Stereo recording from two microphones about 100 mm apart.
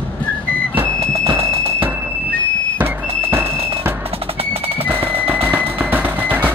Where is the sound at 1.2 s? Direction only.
65° right (ahead or behind).